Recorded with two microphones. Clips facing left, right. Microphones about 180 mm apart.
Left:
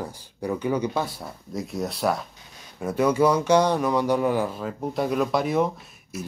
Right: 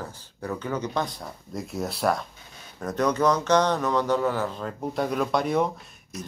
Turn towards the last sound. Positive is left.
turn(degrees=0)  # may be behind; listen again after turning